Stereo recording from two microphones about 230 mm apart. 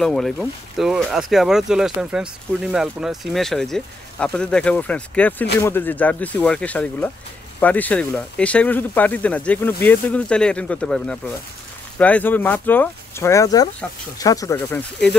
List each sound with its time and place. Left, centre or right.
0.0 s speech: centre